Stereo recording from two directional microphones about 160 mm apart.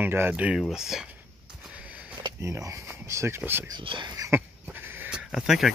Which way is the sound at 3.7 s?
30° right (ahead or behind).